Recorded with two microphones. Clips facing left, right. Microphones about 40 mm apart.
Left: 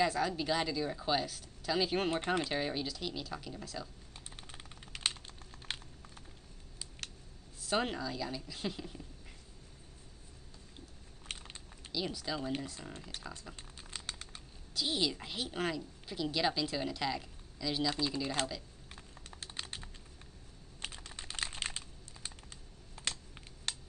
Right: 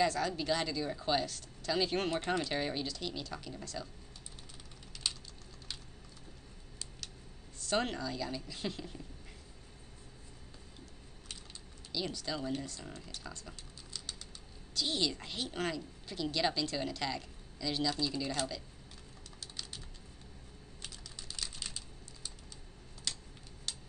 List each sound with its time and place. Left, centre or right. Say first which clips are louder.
0.0 s a woman's voice: even; centre
2.2 s speech: left 1 dB; centre
2.5 s a woman's voice: even; centre
4.4 s vehicle: left 2 dB; left
5.7 s a sound: left 5 dB; left
7.6 s speech: even; centre
11.3 s a sound: left 5 dB; left
11.9 s a woman's voice: even; centre
13.9 s typing: left 2 dB; left
14.7 s a woman's voice: even; centre
17.8 s a woman's voice: even; centre
19.4 s typing: left 3 dB; left
20.8 s computer keyboard: left 5 dB; left
23.7 s a sound: left 3 dB; left